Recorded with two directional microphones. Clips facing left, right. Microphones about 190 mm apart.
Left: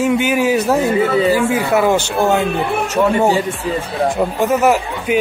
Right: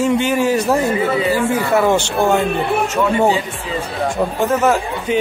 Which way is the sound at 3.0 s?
20° left (ahead or behind).